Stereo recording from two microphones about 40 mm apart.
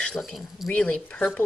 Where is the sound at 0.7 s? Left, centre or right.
Left.